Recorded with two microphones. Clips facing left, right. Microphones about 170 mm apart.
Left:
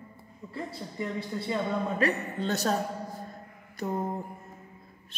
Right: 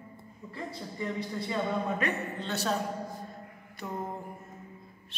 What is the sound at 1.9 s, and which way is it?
Speech, 40° left (ahead or behind).